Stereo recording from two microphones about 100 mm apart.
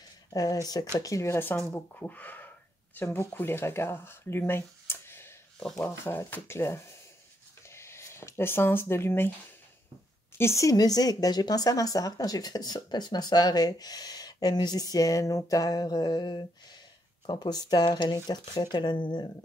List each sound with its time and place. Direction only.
0.3 s speech: 40° left (ahead or behind)
10.3 s speech: 30° left (ahead or behind); by 19.3 s 50° left (ahead or behind)